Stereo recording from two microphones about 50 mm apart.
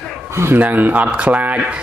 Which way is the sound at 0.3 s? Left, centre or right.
Right.